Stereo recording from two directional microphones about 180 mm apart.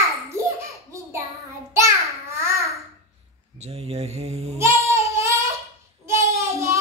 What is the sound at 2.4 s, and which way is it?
Babbling, 15° right (ahead or behind).